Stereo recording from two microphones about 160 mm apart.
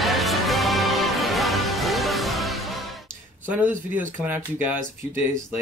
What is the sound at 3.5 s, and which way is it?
Speech, 10° right (ahead or behind).